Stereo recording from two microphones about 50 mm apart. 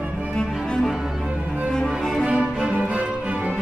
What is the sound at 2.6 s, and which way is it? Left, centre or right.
Music, right.